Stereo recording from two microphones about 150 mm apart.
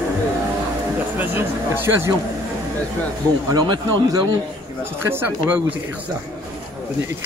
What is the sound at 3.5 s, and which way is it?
Speech, 25° right (ahead or behind).